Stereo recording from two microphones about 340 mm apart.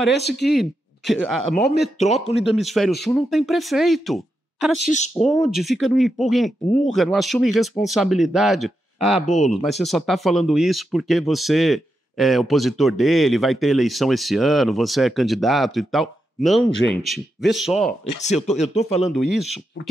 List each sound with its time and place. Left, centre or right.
0.3 s speech: centre
1.8 s speech: centre
2.5 s speech: centre
4.9 s speech: centre
5.2 s speech: centre
18.2 s speech: centre
19.3 s speech: centre